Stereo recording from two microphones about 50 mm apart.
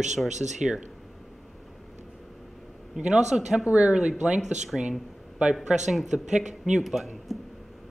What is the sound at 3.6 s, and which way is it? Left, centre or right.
Speech, right.